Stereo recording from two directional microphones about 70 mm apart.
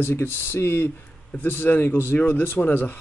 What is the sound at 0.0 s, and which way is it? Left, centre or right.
Speech, left.